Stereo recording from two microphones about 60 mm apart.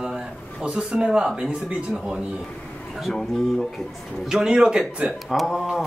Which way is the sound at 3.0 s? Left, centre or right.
Centre.